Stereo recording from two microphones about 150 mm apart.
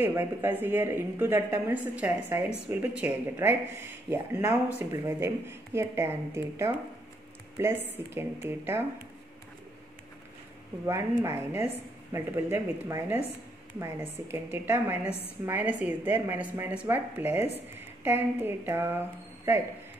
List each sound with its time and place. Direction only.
0.0 s a woman's voice: 15° right (ahead or behind)
11.2 s a woman's voice: 15° right (ahead or behind)